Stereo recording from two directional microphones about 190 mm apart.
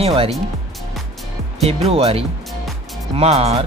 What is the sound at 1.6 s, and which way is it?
Speech, 35° right (ahead or behind).